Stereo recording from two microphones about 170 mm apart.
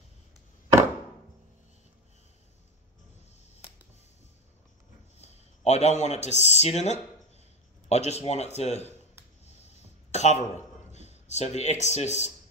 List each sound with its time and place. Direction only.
5.1 s speech: 40° left (ahead or behind)
10.1 s speech: 40° left (ahead or behind)